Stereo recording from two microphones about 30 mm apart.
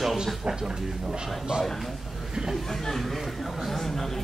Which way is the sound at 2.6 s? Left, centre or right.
Centre.